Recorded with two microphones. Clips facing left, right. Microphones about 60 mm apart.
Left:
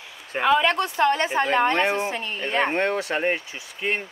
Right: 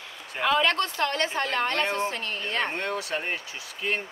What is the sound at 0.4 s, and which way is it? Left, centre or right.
A woman's voice, centre.